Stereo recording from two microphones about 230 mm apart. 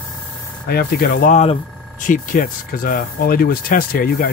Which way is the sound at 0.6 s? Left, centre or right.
Left.